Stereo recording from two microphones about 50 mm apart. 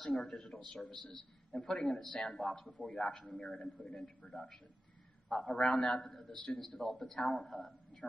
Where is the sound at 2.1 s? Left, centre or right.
Centre.